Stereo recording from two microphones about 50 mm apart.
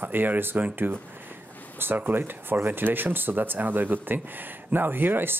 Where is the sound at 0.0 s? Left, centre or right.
Right.